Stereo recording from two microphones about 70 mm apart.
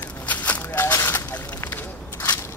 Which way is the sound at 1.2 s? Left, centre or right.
Left.